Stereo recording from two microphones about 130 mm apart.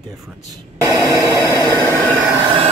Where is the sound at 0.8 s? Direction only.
25° right (ahead or behind).